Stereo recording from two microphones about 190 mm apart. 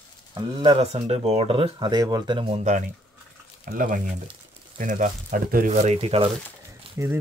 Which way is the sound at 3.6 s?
45° right (ahead or behind).